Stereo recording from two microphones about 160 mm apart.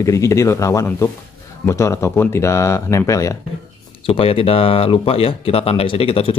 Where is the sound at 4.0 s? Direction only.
35° left (ahead or behind).